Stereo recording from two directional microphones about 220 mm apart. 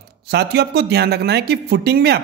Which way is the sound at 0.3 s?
45° right (ahead or behind).